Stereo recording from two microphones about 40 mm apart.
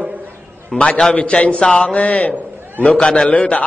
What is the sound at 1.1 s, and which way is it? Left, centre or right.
A man's voice, left.